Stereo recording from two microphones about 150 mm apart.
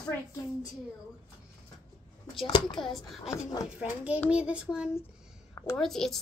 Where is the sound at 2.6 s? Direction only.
5° left (ahead or behind).